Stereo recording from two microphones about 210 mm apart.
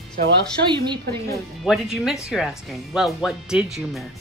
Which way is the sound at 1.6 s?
Centre (ahead or behind).